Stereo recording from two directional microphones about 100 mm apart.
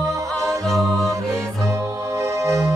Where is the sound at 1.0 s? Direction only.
30° right (ahead or behind).